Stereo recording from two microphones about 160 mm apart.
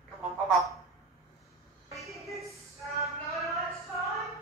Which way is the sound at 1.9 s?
Centre (ahead or behind).